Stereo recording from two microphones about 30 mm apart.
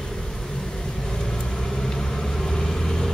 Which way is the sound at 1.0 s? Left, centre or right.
Centre.